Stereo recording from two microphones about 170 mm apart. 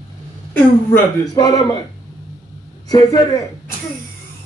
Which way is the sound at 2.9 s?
20° left (ahead or behind).